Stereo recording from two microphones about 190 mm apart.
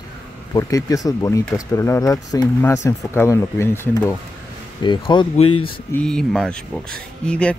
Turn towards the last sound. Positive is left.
turn(degrees=5)  # may be behind; listen again after turning